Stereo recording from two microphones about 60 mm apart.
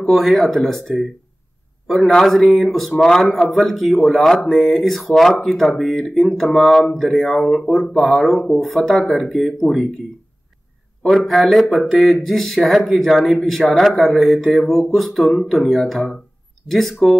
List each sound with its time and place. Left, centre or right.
0.0 s speech: centre
11.1 s speech: centre